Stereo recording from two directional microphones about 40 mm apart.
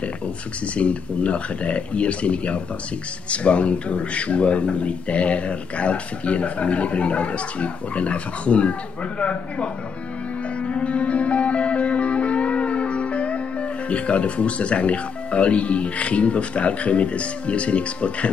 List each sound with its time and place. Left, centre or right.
0.7 s speech: left
10.6 s music: left